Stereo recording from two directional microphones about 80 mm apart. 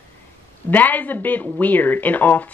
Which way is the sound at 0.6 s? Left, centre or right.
Left.